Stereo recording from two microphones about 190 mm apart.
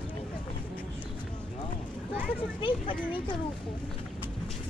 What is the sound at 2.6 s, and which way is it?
Speech, 25° left (ahead or behind).